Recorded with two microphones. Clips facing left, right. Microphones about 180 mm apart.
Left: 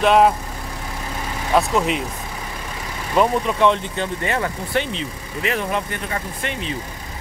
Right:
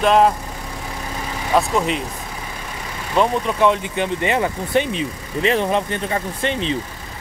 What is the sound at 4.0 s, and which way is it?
Speech, 20° right (ahead or behind).